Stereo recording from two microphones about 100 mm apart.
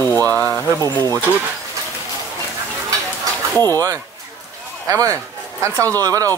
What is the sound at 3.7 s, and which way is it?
A man's voice, 35° right (ahead or behind).